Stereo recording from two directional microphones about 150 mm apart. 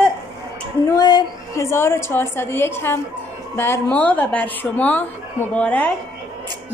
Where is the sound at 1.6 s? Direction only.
15° left (ahead or behind).